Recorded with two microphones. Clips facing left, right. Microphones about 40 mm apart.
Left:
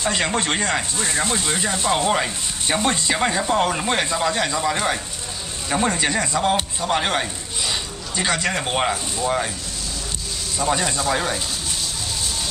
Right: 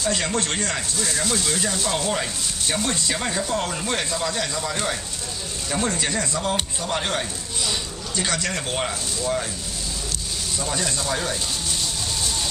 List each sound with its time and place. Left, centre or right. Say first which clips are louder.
0.0 s speech: left 2 dB; left
10.6 s speech: left 7 dB; left